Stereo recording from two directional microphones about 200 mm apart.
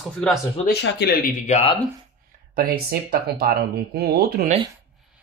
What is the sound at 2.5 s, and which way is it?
Speech, 50° right (ahead or behind).